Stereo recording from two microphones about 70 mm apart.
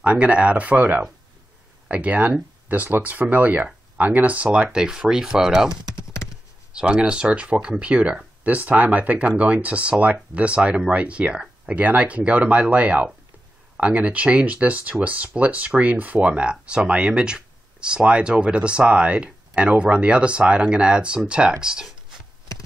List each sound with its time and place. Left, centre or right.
0.0 s speech: centre
5.7 s typing: right
6.7 s speech: centre